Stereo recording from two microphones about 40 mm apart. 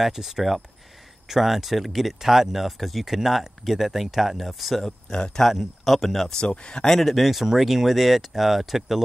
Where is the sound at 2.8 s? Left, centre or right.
Centre.